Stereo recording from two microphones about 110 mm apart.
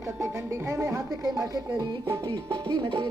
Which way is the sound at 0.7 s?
30° right (ahead or behind).